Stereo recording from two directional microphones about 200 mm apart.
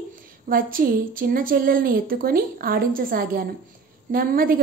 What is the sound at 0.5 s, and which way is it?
A woman's voice, 45° right (ahead or behind).